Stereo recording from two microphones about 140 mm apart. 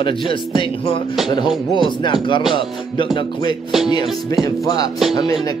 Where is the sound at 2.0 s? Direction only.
35° left (ahead or behind).